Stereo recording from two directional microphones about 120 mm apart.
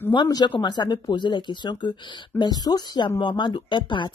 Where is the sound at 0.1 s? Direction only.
35° left (ahead or behind).